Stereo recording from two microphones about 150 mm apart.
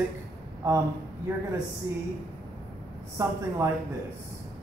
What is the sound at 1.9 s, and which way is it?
Speech, 25° right (ahead or behind).